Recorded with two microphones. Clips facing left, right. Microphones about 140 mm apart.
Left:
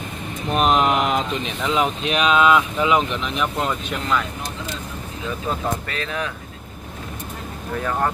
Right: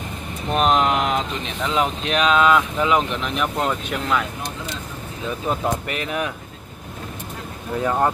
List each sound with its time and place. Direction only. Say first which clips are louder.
0.6 s a sound: even; 5° left (ahead or behind)
1.7 s speech: left 1 dB; 10° left (ahead or behind)
5.5 s speech: right 3 dB; 15° right (ahead or behind)
7.7 s speech: right 3 dB; 20° right (ahead or behind)